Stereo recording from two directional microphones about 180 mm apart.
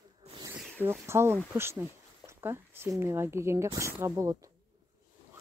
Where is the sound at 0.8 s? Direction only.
15° right (ahead or behind).